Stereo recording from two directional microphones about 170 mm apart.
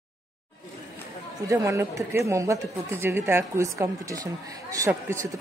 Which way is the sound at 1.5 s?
15° right (ahead or behind).